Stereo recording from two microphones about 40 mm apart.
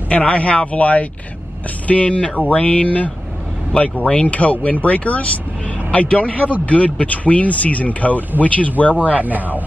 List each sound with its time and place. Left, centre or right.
0.1 s speech: left
2.3 s speech: left
9.2 s speech: right